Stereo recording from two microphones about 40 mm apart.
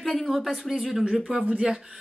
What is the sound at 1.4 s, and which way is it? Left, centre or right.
Speech, right.